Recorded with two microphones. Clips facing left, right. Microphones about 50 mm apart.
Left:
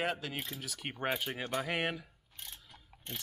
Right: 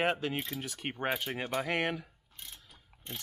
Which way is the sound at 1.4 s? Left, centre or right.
Centre.